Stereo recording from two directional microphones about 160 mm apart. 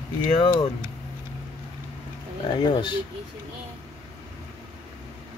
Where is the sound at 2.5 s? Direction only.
30° left (ahead or behind).